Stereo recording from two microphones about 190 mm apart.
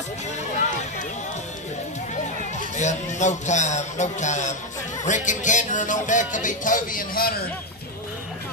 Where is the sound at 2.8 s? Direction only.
40° left (ahead or behind).